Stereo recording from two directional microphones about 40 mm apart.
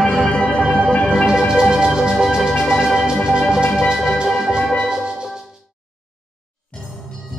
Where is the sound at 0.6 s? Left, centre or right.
Centre.